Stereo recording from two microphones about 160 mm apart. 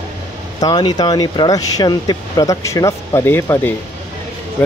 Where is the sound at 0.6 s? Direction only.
25° left (ahead or behind).